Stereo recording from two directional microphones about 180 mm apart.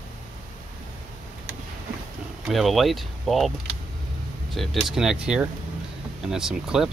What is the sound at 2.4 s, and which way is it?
Speech, centre (ahead or behind).